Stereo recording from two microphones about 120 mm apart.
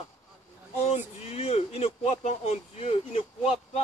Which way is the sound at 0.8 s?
60° left (ahead or behind).